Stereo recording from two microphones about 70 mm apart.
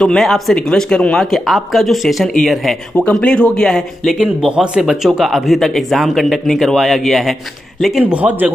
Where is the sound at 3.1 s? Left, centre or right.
Centre.